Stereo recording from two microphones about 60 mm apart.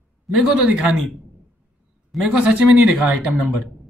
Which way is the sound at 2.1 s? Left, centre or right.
Centre.